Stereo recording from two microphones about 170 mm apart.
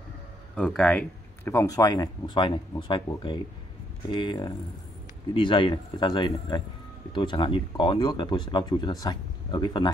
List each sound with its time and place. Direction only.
0.6 s speech: 5° left (ahead or behind); by 3.0 s 30° left (ahead or behind)
4.1 s speech: 25° left (ahead or behind)